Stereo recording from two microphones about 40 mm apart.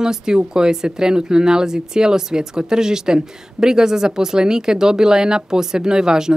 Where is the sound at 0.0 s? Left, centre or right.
Centre.